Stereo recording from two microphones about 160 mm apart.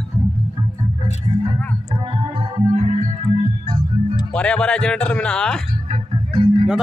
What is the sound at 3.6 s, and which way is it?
Music, 30° right (ahead or behind).